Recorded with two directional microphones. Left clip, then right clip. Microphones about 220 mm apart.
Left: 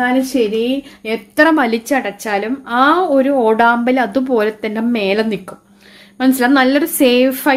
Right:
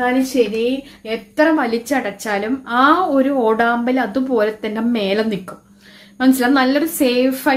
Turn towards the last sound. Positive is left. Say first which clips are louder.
# left 4 dB
turn(degrees=35)  # may be behind; listen again after turning